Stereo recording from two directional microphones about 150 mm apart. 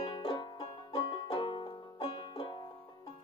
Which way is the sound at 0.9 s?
35° left (ahead or behind).